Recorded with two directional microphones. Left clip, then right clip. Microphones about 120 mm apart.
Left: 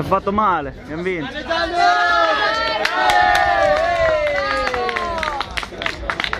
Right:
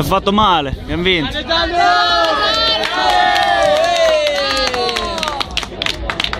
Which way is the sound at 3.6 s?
10° right (ahead or behind).